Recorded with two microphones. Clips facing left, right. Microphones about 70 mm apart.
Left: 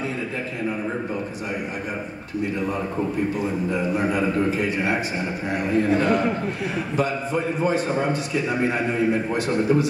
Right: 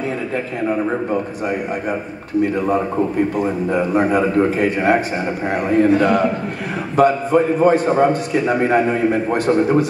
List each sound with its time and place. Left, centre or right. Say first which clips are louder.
3.3 s a man's voice: right 6 dB; right